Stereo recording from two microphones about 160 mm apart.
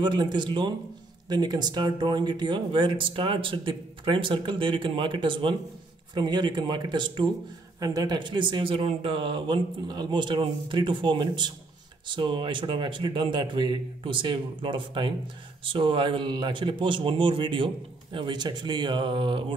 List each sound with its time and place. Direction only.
0.0 s speech: 30° right (ahead or behind)